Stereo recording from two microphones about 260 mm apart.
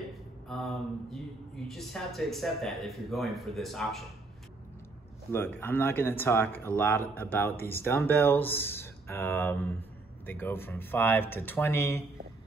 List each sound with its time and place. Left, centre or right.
0.5 s speech: centre
5.3 s speech: centre